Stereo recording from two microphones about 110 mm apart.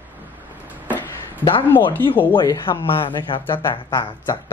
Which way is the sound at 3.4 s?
20° left (ahead or behind).